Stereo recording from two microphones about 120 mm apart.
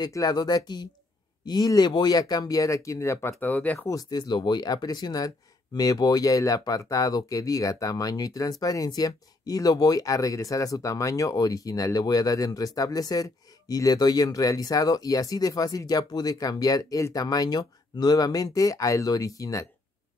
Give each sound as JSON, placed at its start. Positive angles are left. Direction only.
{"t": 0.0, "sound": "speech", "side_deg": 35}
{"t": 3.9, "sound": "speech", "side_deg": 35}